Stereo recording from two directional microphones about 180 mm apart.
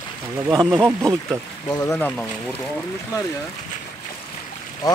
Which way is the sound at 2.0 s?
5° left (ahead or behind).